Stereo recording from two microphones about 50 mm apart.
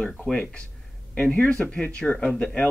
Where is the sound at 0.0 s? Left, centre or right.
Centre.